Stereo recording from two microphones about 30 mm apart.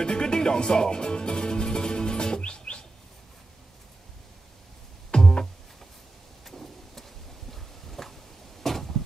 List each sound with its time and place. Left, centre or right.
0.0 s music: left
5.1 s music: left
6.4 s rain: centre
7.5 s a sound: centre